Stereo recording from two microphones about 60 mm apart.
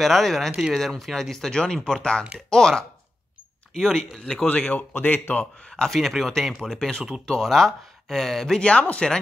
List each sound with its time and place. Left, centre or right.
0.0 s speech: centre
4.5 s speech: left
4.9 s speech: left
5.6 s speech: centre
8.5 s speech: centre